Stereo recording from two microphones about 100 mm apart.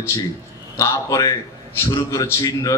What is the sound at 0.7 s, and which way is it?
Speech, 35° left (ahead or behind).